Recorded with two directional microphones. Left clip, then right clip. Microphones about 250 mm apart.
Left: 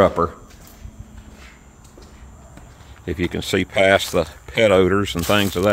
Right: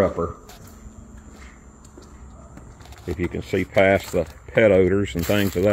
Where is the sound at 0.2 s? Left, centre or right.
Left.